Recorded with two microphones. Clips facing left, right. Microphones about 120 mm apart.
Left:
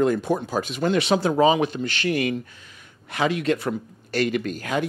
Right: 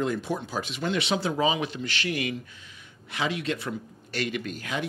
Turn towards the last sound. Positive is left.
turn(degrees=45)  # may be behind; listen again after turning